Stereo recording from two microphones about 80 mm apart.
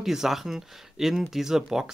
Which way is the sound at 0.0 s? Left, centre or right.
Centre.